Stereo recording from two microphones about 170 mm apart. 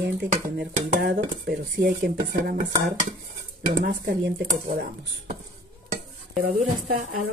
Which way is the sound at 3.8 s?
65° right (ahead or behind).